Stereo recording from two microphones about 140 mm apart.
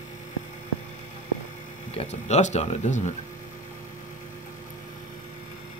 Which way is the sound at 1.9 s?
50° left (ahead or behind).